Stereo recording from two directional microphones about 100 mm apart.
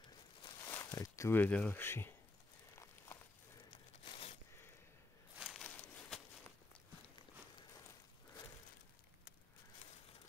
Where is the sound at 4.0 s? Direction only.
70° left (ahead or behind).